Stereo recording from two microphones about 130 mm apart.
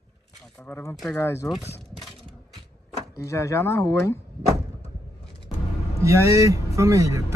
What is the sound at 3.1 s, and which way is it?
Speech, 25° left (ahead or behind).